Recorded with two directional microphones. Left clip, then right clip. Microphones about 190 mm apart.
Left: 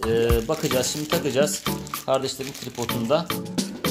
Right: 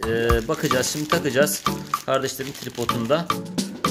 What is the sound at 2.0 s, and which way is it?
Speech, 20° right (ahead or behind).